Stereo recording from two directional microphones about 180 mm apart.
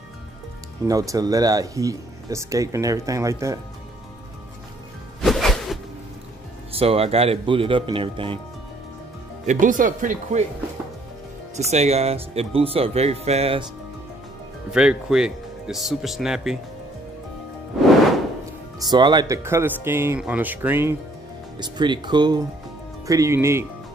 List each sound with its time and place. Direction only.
0.8 s speech: 20° right (ahead or behind)
5.2 s music: centre (ahead or behind)
6.7 s speech: 35° right (ahead or behind)
9.5 s speech: 45° right (ahead or behind)
11.5 s speech: 35° right (ahead or behind)
14.7 s speech: 5° right (ahead or behind)
18.8 s speech: 25° right (ahead or behind)
21.5 s speech: 25° right (ahead or behind)